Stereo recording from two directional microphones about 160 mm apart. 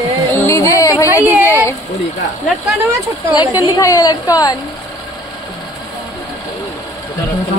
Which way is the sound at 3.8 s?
20° left (ahead or behind).